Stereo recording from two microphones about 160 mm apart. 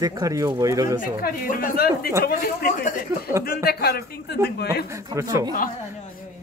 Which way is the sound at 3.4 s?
75° left (ahead or behind).